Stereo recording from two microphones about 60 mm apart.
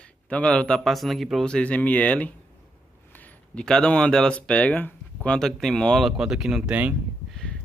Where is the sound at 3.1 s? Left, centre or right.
Left.